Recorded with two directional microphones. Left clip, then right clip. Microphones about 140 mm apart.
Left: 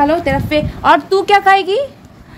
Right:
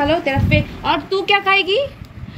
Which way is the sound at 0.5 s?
55° left (ahead or behind).